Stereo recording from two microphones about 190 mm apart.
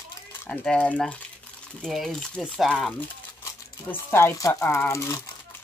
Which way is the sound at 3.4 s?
15° left (ahead or behind).